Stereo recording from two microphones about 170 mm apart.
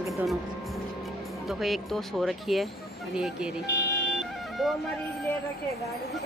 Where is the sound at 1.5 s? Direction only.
Centre (ahead or behind).